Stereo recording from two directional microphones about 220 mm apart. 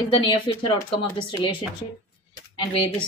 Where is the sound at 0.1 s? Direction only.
20° left (ahead or behind).